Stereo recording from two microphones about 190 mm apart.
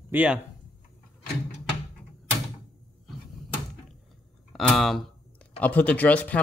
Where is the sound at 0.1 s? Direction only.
10° right (ahead or behind).